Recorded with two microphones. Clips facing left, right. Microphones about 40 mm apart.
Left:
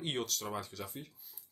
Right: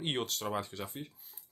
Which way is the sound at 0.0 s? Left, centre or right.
Right.